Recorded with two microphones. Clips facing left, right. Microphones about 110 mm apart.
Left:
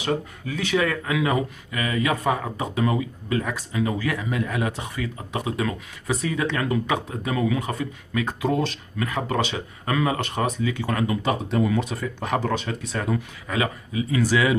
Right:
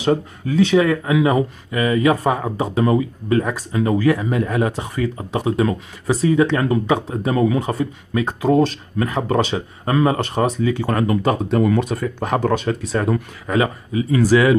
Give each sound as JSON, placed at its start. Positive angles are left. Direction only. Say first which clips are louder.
{"t": 0.0, "sound": "speech", "louder": "right 7 dB", "side_deg": -35}